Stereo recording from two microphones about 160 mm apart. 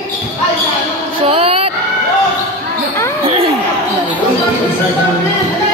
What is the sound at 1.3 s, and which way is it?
Music, 35° right (ahead or behind).